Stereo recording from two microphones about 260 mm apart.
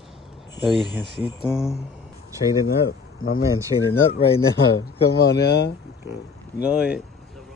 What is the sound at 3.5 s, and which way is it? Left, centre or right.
Speech, centre.